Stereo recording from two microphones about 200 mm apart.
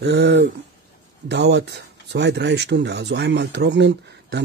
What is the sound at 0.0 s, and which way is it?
Speech, 60° right (ahead or behind).